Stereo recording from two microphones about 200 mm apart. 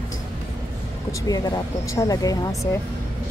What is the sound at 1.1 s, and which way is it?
Speech, 15° left (ahead or behind).